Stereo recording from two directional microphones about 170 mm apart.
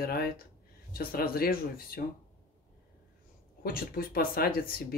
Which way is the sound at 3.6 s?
60° left (ahead or behind).